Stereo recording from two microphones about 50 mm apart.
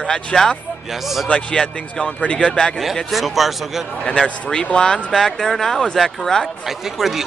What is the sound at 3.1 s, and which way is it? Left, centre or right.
Speech, centre.